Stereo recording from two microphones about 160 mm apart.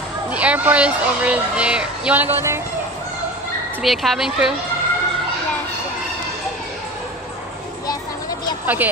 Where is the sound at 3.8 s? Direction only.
Centre (ahead or behind).